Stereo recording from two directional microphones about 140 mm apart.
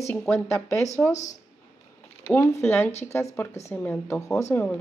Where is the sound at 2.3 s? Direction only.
20° left (ahead or behind).